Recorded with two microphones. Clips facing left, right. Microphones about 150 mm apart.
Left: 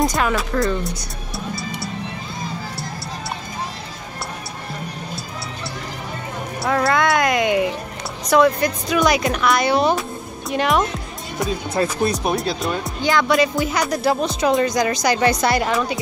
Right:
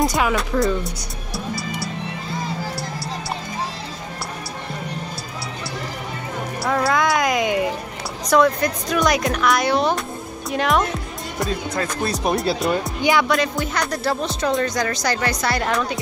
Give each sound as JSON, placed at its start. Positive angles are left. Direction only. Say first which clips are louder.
{"t": 0.0, "sound": "speech", "louder": "even", "side_deg": -5}
{"t": 6.6, "sound": "a sound", "louder": "left 1 dB", "side_deg": 0}
{"t": 8.3, "sound": "speech", "louder": "left 1 dB", "side_deg": 0}
{"t": 11.8, "sound": "speech", "louder": "left 8 dB", "side_deg": 25}
{"t": 12.3, "sound": "speech", "louder": "right 2 dB", "side_deg": 0}
{"t": 13.0, "sound": "speech", "louder": "even", "side_deg": -10}
{"t": 13.3, "sound": "speech", "louder": "left 3 dB", "side_deg": 5}
{"t": 15.6, "sound": "speech", "louder": "left 1 dB", "side_deg": 5}